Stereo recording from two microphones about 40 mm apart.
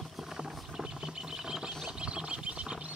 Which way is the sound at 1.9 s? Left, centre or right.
Right.